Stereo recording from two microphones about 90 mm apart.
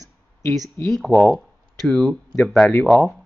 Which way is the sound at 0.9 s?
Centre (ahead or behind).